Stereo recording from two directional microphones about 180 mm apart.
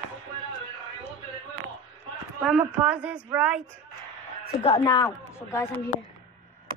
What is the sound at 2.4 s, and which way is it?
A woman's voice, 5° right (ahead or behind).